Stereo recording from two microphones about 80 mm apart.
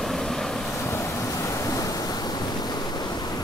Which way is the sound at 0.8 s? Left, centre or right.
Left.